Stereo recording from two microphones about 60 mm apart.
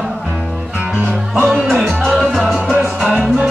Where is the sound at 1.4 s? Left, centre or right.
Centre.